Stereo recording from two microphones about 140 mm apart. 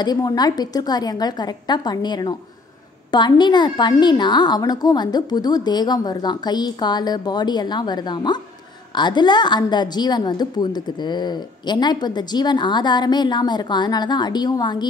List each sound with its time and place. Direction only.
0.0 s a woman's voice: 25° left (ahead or behind)